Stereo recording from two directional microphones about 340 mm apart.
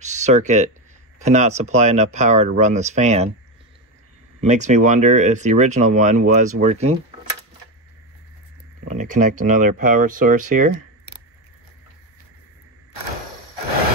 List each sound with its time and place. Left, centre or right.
0.0 s a sound: right
1.2 s speech: centre
4.4 s speech: right
8.8 s speech: right